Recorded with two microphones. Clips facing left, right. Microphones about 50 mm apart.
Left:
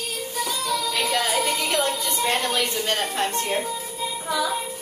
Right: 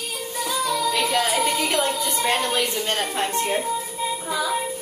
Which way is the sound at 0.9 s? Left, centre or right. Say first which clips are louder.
Right 2 dB; centre.